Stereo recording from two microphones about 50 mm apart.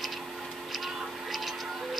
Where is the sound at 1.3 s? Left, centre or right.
Centre.